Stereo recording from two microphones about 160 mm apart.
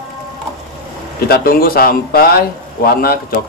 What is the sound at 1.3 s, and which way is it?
Speech, 70° left (ahead or behind).